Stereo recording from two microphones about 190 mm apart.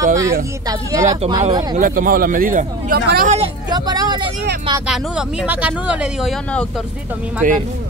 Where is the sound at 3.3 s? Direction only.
25° right (ahead or behind).